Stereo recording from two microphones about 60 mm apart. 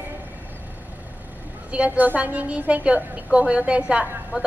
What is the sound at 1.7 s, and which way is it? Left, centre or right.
A woman's voice, right.